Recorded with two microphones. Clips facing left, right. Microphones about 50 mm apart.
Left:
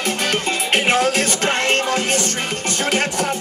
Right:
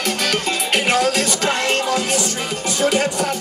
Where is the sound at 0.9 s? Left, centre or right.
Left.